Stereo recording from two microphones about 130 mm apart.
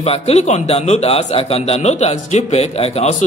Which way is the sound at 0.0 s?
55° left (ahead or behind).